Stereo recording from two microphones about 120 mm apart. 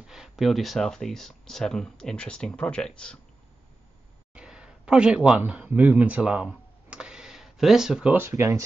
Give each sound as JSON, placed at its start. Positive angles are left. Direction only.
{"t": 0.0, "sound": "speech", "side_deg": -5}
{"t": 4.3, "sound": "a sound", "side_deg": -5}
{"t": 8.1, "sound": "speech", "side_deg": -20}